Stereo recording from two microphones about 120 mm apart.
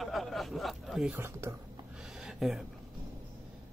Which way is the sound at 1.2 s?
20° right (ahead or behind).